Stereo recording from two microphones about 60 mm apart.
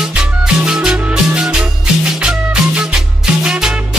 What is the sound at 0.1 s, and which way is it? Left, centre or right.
Music, centre.